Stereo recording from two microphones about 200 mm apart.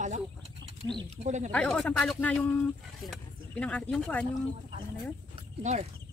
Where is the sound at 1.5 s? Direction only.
5° left (ahead or behind).